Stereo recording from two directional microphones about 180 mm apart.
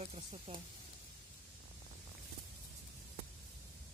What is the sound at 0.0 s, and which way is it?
Speech, 35° right (ahead or behind).